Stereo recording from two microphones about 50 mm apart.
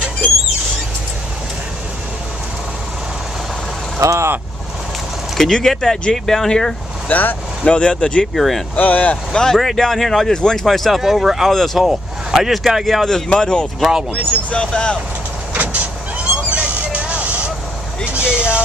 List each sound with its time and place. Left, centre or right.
4.0 s speech: right
5.4 s speech: centre
7.1 s speech: left
7.6 s speech: left
8.4 s speech: centre
8.7 s speech: left
9.3 s speech: centre
11.0 s speech: centre
11.5 s speech: centre
13.0 s speech: centre
13.7 s speech: centre
14.1 s speech: centre
15.5 s vehicle: right